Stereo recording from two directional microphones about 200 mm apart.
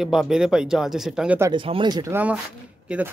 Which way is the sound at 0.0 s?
Centre (ahead or behind).